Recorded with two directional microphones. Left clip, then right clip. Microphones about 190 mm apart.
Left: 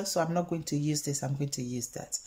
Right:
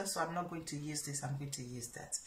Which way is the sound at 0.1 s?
50° left (ahead or behind).